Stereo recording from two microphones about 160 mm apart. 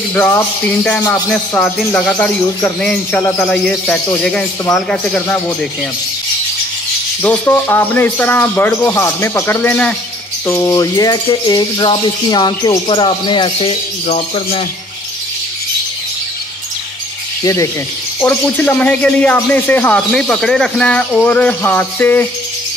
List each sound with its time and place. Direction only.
0.1 s speech: 5° left (ahead or behind)
3.4 s speech: 5° left (ahead or behind)
7.2 s speech: 10° left (ahead or behind); by 14.6 s 40° left (ahead or behind)
17.4 s speech: 20° left (ahead or behind)